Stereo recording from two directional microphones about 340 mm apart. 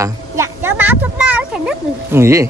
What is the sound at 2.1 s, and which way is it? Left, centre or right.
Speech, centre.